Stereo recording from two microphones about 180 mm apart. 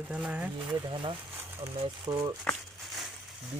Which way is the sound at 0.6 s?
30° right (ahead or behind).